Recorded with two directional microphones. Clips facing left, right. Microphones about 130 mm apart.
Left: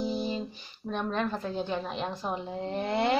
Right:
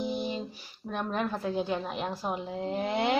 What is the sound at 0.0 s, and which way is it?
Music, 20° right (ahead or behind).